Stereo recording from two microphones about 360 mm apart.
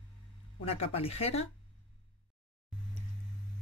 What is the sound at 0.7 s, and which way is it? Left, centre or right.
Speech, centre.